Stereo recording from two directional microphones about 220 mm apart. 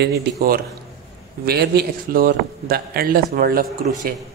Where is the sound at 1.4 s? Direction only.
45° right (ahead or behind).